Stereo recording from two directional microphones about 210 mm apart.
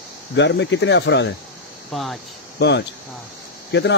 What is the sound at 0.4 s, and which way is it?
Speech, 55° left (ahead or behind).